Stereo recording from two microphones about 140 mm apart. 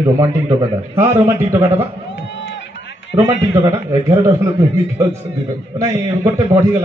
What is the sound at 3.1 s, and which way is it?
A man's voice, 15° right (ahead or behind).